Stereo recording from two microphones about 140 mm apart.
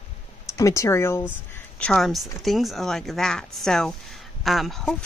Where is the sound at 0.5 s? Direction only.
20° left (ahead or behind).